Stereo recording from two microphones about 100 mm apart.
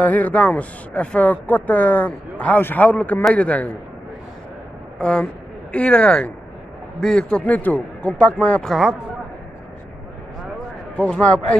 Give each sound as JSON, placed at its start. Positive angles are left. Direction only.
{"t": 0.0, "sound": "speech", "side_deg": 15}
{"t": 4.9, "sound": "speech", "side_deg": 10}
{"t": 8.6, "sound": "speech", "side_deg": -5}
{"t": 11.0, "sound": "speech", "side_deg": 10}